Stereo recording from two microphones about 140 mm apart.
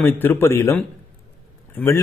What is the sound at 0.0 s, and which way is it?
A man's voice, 15° left (ahead or behind).